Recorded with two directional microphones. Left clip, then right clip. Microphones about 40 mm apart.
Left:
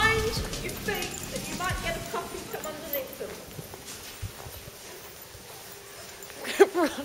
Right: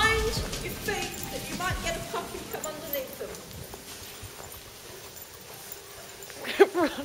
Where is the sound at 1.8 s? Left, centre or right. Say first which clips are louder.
Even; right.